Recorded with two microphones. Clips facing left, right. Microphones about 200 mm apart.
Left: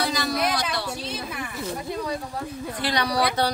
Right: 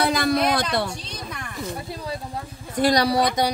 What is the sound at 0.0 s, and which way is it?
Music, 55° right (ahead or behind).